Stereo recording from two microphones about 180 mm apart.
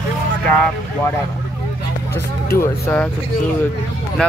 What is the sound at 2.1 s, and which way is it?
Speech, 15° left (ahead or behind).